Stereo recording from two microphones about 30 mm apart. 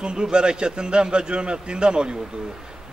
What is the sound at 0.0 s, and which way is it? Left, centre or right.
A man's voice, right.